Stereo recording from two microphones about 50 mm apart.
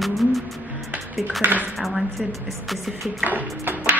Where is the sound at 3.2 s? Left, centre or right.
Right.